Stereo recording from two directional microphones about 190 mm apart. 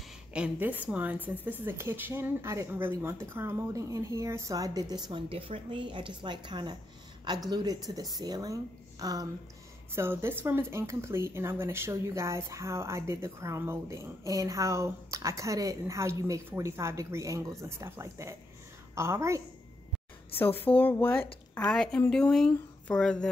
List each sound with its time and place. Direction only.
0.3 s speech: 5° right (ahead or behind)
20.3 s a woman's voice: 10° left (ahead or behind)